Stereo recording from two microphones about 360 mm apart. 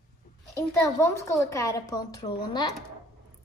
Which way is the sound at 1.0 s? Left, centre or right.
Centre.